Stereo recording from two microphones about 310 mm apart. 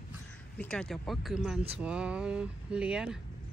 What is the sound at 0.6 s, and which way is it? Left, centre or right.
Speech, centre.